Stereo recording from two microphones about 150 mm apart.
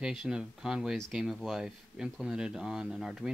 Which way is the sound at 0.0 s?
5° right (ahead or behind).